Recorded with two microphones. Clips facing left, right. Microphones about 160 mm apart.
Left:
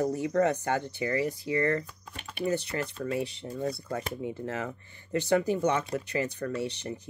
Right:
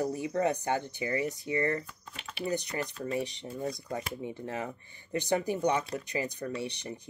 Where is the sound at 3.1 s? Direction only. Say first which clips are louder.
Even; 15° right (ahead or behind).